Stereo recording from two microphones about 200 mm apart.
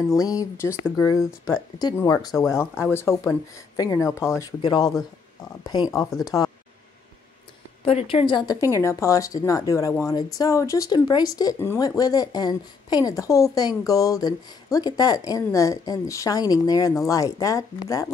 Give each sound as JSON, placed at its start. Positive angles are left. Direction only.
{"t": 0.2, "sound": "a woman's voice", "side_deg": 15}
{"t": 2.3, "sound": "speech", "side_deg": 0}
{"t": 2.8, "sound": "a woman's voice", "side_deg": 10}
{"t": 6.2, "sound": "speech", "side_deg": 15}
{"t": 7.8, "sound": "a woman's voice", "side_deg": 30}